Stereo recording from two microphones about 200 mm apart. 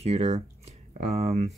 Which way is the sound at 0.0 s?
35° right (ahead or behind).